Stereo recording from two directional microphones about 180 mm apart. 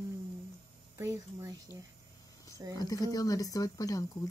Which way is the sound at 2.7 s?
20° left (ahead or behind).